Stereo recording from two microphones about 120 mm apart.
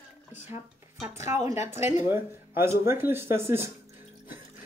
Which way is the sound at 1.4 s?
25° right (ahead or behind).